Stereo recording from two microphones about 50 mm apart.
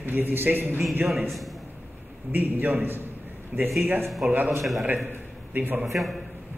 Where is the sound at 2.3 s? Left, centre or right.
Right.